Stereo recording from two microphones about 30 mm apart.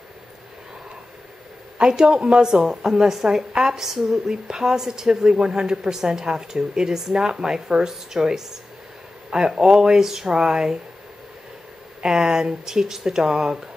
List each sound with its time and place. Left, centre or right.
1.8 s speech: right
2.6 s a woman's voice: centre
4.3 s speech: right
9.6 s a woman's voice: right
12.0 s speech: right